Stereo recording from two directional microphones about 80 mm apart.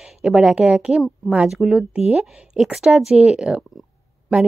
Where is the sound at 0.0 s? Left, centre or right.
Centre.